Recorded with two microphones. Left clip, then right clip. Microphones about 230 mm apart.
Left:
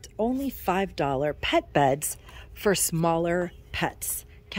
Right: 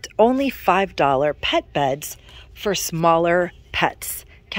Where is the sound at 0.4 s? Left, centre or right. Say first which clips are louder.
Right 9 dB; centre.